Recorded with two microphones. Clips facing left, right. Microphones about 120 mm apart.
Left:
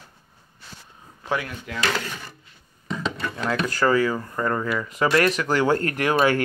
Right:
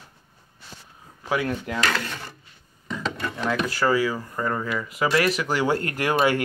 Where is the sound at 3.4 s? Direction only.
10° right (ahead or behind).